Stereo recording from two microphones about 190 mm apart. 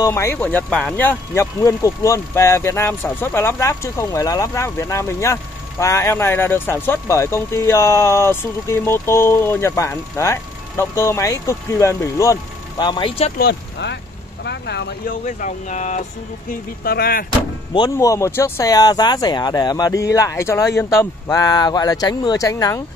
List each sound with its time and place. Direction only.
0.0 s speech: 15° left (ahead or behind)
13.4 s speech: 65° left (ahead or behind)
15.2 s speech: 40° left (ahead or behind)
16.8 s speech: 55° left (ahead or behind)
17.7 s speech: 20° left (ahead or behind)